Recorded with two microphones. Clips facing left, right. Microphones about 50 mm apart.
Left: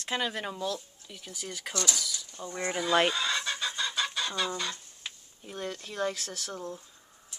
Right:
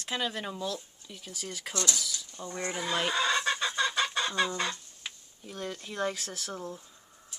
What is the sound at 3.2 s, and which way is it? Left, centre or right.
Chicken, right.